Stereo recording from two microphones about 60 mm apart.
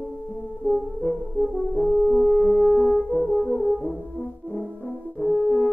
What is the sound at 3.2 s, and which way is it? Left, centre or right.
French horn, centre.